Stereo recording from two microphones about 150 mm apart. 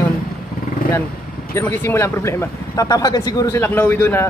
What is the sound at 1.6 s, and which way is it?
Speech, 15° left (ahead or behind).